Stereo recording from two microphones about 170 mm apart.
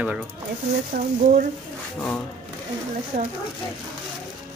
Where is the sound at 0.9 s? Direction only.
60° right (ahead or behind).